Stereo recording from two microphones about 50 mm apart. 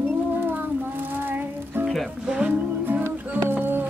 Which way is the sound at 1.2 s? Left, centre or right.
Right.